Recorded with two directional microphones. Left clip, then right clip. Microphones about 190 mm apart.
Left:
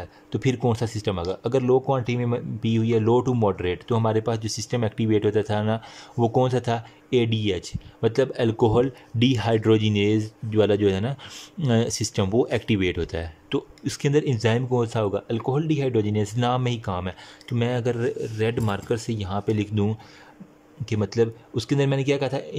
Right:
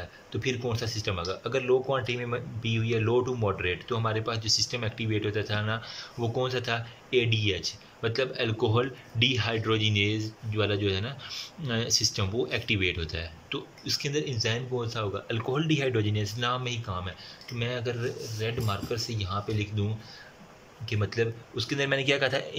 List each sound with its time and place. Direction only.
0.3 s speech: 35° left (ahead or behind)
20.8 s speech: 30° left (ahead or behind)